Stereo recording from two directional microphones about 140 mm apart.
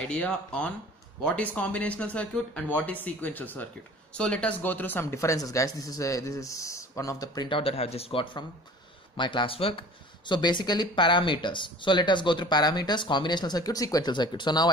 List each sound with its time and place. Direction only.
0.0 s speech: 10° left (ahead or behind); by 14.7 s 30° left (ahead or behind)